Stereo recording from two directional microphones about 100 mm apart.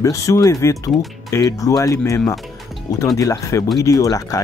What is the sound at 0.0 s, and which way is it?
Speech, 30° left (ahead or behind).